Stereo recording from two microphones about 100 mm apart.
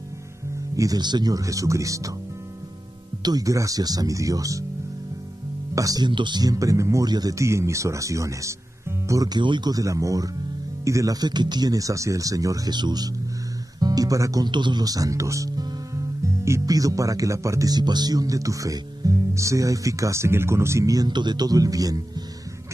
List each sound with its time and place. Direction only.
0.7 s speech: 40° right (ahead or behind)
3.2 s speech: 40° right (ahead or behind)
5.8 s speech: 35° right (ahead or behind)
6.0 s speech: 50° right (ahead or behind); by 9.4 s 35° right (ahead or behind)
9.4 s speech: 50° right (ahead or behind)
14.5 s speech: 50° right (ahead or behind)